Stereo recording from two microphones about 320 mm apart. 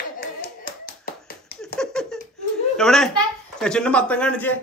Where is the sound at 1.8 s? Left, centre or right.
Centre.